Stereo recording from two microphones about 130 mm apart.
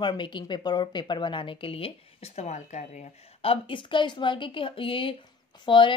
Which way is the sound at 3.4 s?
45° left (ahead or behind).